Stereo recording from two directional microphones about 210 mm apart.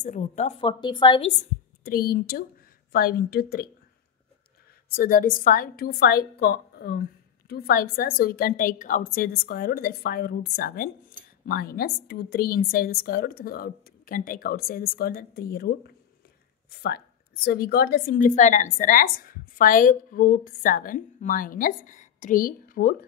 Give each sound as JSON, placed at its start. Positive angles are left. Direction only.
{"t": 0.0, "sound": "a woman's voice", "side_deg": 35}
{"t": 1.9, "sound": "a woman's voice", "side_deg": 45}
{"t": 4.8, "sound": "a woman's voice", "side_deg": 45}